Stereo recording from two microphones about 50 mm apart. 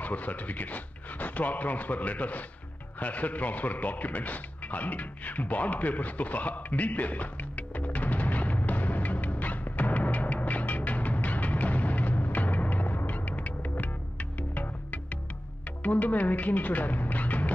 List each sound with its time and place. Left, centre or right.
0.0 s speech: left
3.0 s a sound: left
15.8 s speech: left